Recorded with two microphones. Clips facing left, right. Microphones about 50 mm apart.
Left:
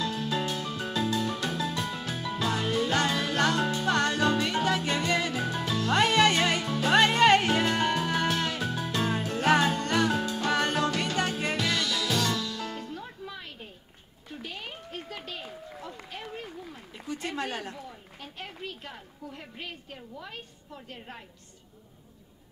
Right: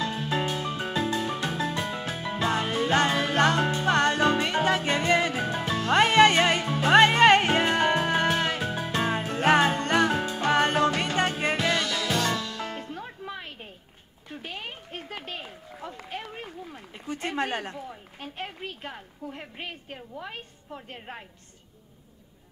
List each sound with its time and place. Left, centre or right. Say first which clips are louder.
0.0 s music: right 2 dB; right
14.4 s a sound: right 2 dB; right
17.1 s a woman's voice: right 4 dB; right